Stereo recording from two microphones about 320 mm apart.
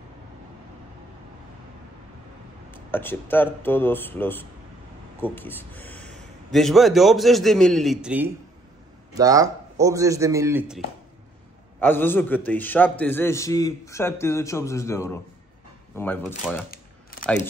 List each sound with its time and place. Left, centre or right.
2.7 s a man's voice: centre
11.8 s a man's voice: centre
16.7 s a sound: left